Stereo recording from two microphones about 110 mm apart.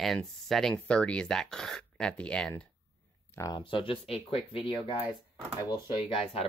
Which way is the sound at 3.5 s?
50° left (ahead or behind).